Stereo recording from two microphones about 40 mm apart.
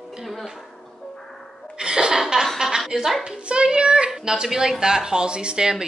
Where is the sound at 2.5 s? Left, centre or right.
Centre.